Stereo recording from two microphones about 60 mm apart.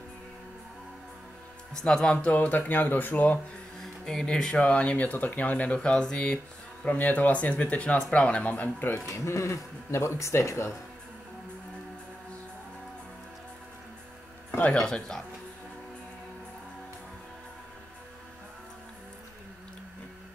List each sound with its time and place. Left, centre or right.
1.7 s speech: centre
2.3 s speech: left
3.8 s speech: centre
6.9 s speech: left
9.0 s speech: left
14.8 s speech: centre